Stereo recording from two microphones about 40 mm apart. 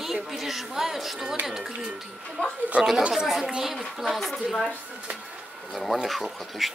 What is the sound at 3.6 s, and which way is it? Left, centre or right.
A woman's voice, centre.